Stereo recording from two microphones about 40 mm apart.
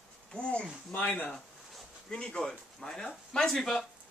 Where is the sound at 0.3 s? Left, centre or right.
Left.